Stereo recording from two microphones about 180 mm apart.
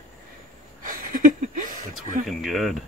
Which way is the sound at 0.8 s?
50° right (ahead or behind).